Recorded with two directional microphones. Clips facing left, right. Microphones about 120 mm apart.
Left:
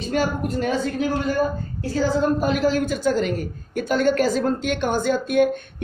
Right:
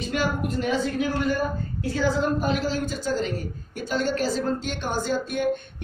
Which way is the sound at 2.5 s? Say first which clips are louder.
Left 6 dB; 50° left (ahead or behind).